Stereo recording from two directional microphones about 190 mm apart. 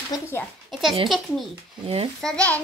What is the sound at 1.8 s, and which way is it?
Speech, 30° right (ahead or behind).